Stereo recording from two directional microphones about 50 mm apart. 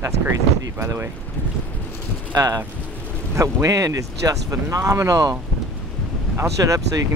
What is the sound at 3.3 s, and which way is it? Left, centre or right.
Speech, right.